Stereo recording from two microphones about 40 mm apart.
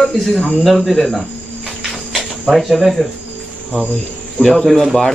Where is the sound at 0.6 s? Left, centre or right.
Centre.